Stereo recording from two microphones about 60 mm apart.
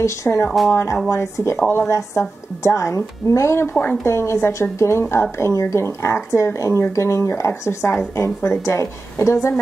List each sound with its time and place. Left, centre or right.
0.0 s speech: left
1.6 s a woman's voice: left
1.9 s a woman's voice: left